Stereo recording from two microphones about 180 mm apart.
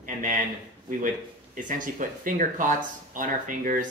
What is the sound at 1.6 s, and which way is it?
Speech, 45° right (ahead or behind).